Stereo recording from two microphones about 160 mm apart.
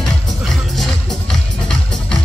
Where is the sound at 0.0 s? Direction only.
Centre (ahead or behind).